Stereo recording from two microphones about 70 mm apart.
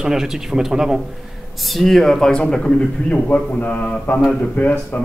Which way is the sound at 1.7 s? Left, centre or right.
Centre.